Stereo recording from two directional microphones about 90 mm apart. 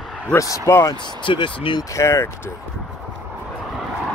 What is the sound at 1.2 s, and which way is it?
Speech, 65° left (ahead or behind).